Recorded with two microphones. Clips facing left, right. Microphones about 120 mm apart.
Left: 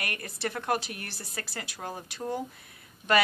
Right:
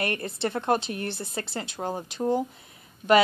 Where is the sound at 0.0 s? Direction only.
25° right (ahead or behind).